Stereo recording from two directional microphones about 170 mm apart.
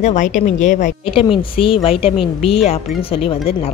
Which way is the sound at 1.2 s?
30° left (ahead or behind).